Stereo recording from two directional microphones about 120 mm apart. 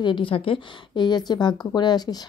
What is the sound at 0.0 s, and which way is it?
A woman's voice, 45° left (ahead or behind).